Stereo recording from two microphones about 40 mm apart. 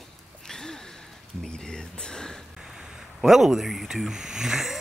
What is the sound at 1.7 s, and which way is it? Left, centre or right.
Speech, left.